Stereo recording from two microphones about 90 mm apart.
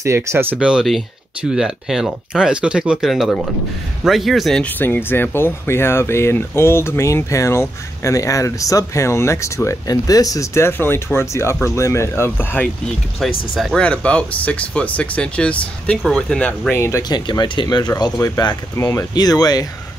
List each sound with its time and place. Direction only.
0.0 s speech: 30° right (ahead or behind)
0.6 s a man's voice: 10° right (ahead or behind)
4.6 s speech: 20° left (ahead or behind)
13.2 s a man's voice: centre (ahead or behind)
13.7 s speech: 15° left (ahead or behind)
16.7 s speech: 30° left (ahead or behind)
17.1 s speech: 55° left (ahead or behind)
18.8 s speech: 30° left (ahead or behind)
19.1 s speech: 45° left (ahead or behind)